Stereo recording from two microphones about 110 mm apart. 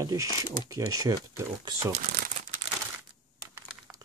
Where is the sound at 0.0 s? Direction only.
30° right (ahead or behind).